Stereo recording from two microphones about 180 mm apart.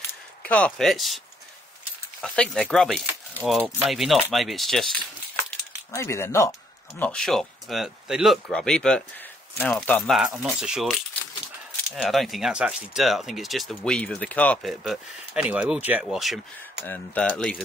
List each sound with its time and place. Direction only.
0.4 s speech: 5° left (ahead or behind)
2.2 s speech: 5° left (ahead or behind)
5.9 s speech: 15° left (ahead or behind)
7.0 s speech: 5° left (ahead or behind)
16.8 s speech: 10° left (ahead or behind)